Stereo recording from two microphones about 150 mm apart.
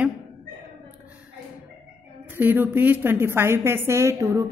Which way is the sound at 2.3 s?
15° right (ahead or behind).